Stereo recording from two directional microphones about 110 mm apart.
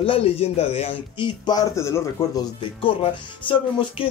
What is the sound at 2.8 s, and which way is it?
Speech, 50° left (ahead or behind).